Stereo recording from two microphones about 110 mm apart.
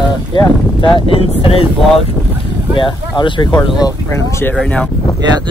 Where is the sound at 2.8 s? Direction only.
45° left (ahead or behind).